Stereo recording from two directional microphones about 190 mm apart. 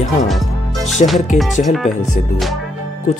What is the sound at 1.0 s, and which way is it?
Speech, 40° left (ahead or behind).